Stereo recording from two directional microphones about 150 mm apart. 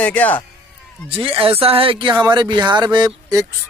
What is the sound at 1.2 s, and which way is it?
Speech, 35° right (ahead or behind).